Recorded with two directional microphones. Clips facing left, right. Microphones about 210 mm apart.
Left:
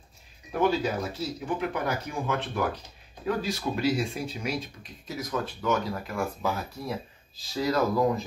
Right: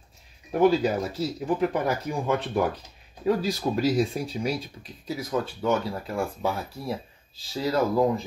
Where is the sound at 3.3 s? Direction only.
35° right (ahead or behind).